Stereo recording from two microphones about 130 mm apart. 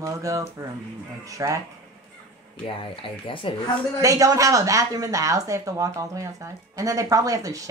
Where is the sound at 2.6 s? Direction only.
40° left (ahead or behind).